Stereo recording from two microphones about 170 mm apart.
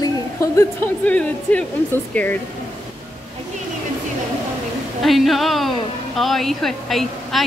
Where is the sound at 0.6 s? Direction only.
10° left (ahead or behind).